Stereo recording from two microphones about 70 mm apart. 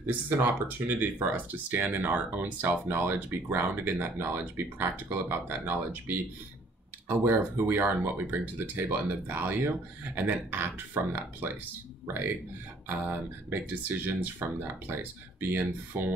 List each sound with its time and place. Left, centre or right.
0.0 s speech: right
13.5 s speech: right